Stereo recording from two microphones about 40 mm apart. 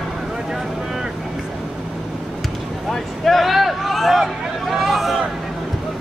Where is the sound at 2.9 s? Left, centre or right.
Centre.